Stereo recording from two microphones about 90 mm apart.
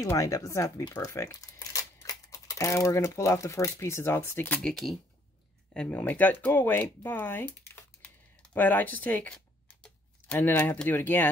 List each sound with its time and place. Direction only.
0.2 s speech: 40° left (ahead or behind)
4.6 s speech: 5° left (ahead or behind); by 11.2 s 20° left (ahead or behind)